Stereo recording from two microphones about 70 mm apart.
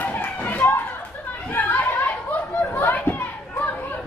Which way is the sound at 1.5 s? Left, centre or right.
Left.